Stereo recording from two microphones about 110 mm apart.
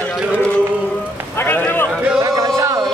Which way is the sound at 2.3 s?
30° right (ahead or behind).